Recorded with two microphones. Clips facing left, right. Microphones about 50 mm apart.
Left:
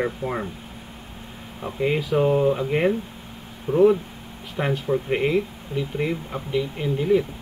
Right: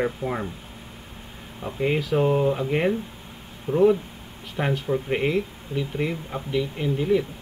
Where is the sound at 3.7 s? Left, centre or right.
Left.